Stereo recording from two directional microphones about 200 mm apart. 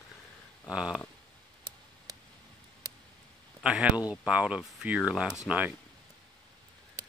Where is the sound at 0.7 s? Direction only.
5° right (ahead or behind).